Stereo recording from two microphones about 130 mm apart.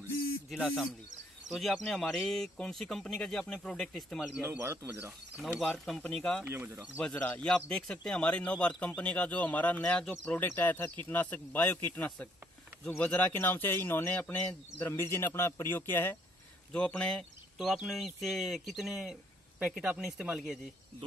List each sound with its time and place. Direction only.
0.5 s speech: centre (ahead or behind)
4.4 s speech: 20° right (ahead or behind)
5.6 s speech: 5° left (ahead or behind)
6.4 s speech: 20° right (ahead or behind)
7.0 s a man's voice: 10° left (ahead or behind)